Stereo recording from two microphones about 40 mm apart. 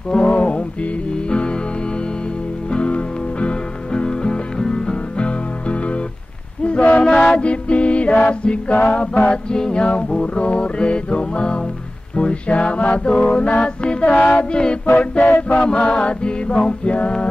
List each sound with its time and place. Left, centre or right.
0.1 s music: left
2.7 s music: left
6.6 s a sound: left
7.1 s music: left
9.3 s mantra: left
15.0 s music: left
15.6 s mantra: left